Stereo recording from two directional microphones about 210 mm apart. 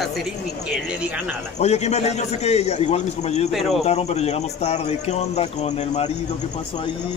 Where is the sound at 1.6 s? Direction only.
30° left (ahead or behind).